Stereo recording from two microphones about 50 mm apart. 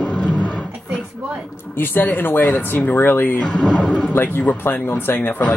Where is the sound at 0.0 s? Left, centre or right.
Left.